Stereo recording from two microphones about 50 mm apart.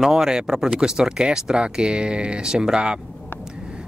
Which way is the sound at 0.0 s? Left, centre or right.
Centre.